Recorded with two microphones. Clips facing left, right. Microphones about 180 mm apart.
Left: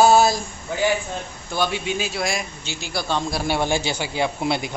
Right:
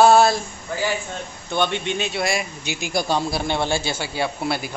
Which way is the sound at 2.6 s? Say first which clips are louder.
Right 5 dB; 15° right (ahead or behind).